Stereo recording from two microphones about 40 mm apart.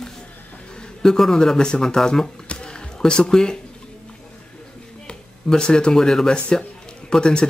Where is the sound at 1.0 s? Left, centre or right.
Centre.